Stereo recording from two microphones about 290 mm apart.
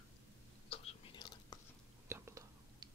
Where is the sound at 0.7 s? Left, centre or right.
Centre.